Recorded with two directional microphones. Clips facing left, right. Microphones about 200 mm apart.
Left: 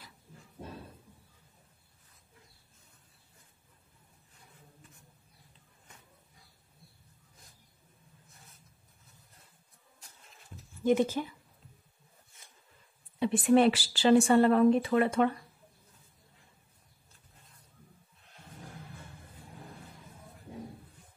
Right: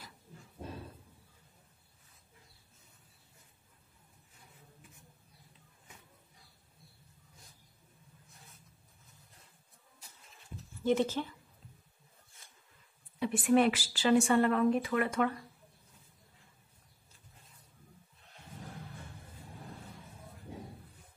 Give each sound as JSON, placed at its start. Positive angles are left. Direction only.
{"t": 10.8, "sound": "speech", "side_deg": 15}
{"t": 13.2, "sound": "a woman's voice", "side_deg": 30}